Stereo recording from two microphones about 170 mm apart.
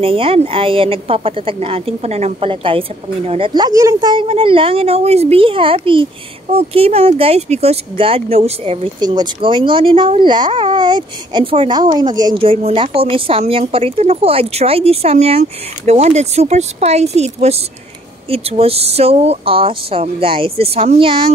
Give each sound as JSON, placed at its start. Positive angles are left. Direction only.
{"t": 0.0, "sound": "a woman's voice", "side_deg": -35}
{"t": 9.0, "sound": "a woman's voice", "side_deg": -25}